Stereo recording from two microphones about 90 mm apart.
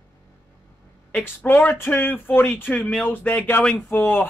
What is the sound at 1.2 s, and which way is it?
Speech, 20° left (ahead or behind).